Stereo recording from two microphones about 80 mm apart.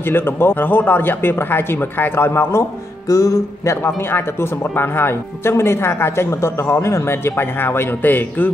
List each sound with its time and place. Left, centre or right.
0.0 s a man's voice: left
3.1 s music: left
3.7 s speech: left